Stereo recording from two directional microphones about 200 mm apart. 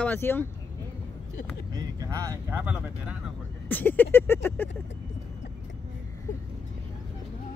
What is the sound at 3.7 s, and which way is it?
Speech, 10° left (ahead or behind).